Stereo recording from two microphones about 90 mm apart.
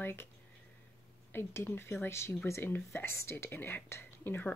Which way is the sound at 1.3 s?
25° left (ahead or behind).